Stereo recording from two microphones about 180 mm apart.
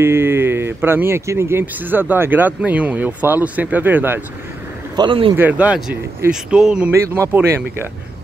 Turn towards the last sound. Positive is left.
turn(degrees=-10)  # may be behind; listen again after turning